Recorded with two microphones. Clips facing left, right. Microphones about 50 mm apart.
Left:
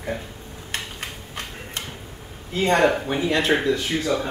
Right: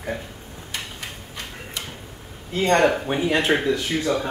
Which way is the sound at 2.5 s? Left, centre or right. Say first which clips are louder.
Right 1 dB; centre.